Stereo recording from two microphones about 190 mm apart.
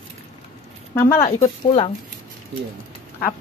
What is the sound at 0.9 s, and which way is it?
Speech, 15° left (ahead or behind).